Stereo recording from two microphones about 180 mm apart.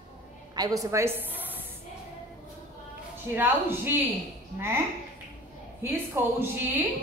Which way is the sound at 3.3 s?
10° right (ahead or behind).